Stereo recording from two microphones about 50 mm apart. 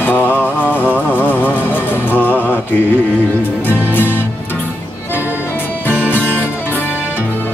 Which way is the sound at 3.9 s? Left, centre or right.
Left.